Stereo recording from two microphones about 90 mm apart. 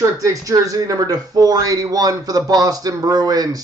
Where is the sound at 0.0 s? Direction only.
40° right (ahead or behind).